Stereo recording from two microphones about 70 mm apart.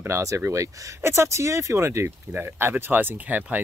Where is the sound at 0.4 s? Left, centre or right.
Right.